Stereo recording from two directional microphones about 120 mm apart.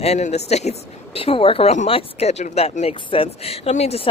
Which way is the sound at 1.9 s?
65° left (ahead or behind).